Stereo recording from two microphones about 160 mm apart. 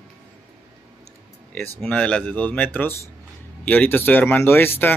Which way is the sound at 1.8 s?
5° left (ahead or behind).